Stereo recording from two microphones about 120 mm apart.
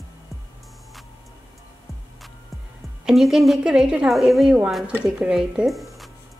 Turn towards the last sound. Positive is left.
turn(degrees=0)  # may be behind; listen again after turning